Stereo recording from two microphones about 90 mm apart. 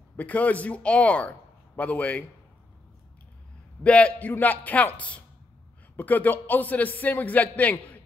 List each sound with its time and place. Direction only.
0.1 s speech: 15° left (ahead or behind)
3.8 s speech: 15° left (ahead or behind)